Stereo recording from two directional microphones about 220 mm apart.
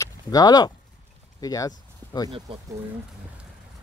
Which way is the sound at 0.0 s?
15° left (ahead or behind).